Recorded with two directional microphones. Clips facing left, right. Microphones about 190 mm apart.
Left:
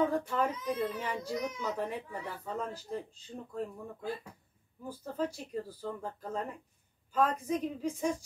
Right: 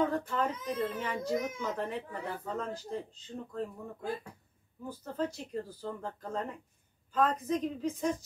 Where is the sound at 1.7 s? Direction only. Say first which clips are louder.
Even; 10° left (ahead or behind).